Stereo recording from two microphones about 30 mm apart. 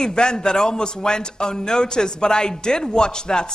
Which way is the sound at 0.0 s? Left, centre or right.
Left.